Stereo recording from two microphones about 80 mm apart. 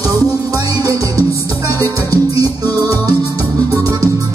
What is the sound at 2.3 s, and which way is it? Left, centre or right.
Music, right.